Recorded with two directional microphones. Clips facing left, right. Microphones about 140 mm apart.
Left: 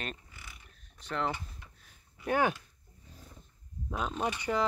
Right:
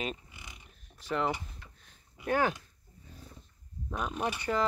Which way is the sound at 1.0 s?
Centre (ahead or behind).